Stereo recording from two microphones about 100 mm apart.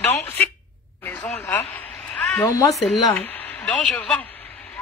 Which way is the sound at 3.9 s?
15° left (ahead or behind).